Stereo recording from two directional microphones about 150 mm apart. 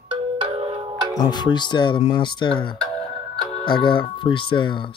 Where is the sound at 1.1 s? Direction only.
30° left (ahead or behind).